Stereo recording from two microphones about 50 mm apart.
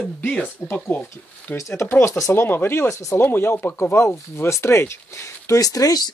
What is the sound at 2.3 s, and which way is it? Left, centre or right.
Speech, left.